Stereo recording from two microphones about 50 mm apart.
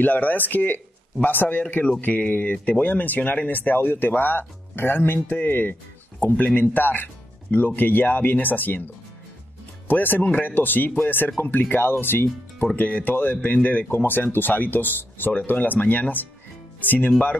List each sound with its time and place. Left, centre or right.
0.0 s speech: left
2.5 s speech: left
2.8 s speech: left
9.8 s speech: left
10.2 s speech: left
10.5 s speech: left
12.7 s speech: left